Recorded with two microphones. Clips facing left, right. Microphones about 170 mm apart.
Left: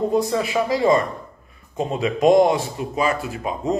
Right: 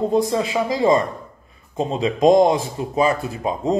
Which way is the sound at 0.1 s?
25° right (ahead or behind).